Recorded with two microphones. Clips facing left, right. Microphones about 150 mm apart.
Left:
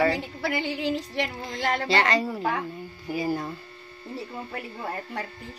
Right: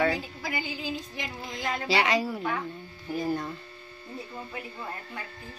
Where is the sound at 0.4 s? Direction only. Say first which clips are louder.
Left 6 dB; 70° left (ahead or behind).